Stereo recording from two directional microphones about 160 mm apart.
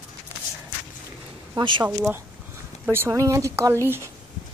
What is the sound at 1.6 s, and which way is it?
Speech, 30° right (ahead or behind).